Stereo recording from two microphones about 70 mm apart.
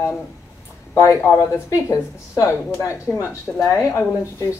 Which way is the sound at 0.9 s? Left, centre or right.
Left.